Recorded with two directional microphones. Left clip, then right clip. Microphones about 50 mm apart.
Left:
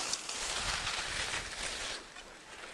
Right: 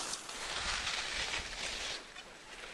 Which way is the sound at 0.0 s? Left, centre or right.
Left.